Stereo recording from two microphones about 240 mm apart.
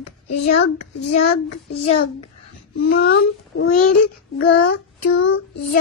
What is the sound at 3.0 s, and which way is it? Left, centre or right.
Speech, left.